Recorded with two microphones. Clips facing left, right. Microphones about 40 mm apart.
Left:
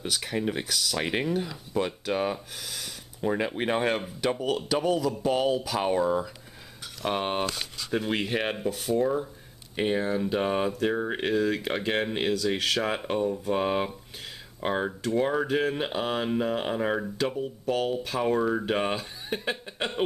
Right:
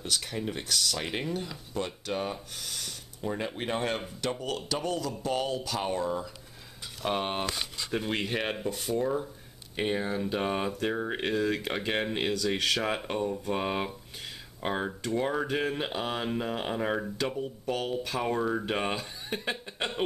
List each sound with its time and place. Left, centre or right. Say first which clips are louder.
0.0 s speech: left 4 dB; centre
3.2 s speech: left 6 dB; left; by 20.1 s centre